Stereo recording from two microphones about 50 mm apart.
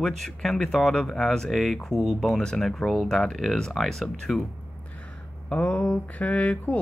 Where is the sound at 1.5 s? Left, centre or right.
Centre.